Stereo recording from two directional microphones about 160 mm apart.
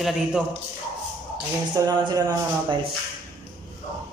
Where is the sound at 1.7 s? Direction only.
25° right (ahead or behind).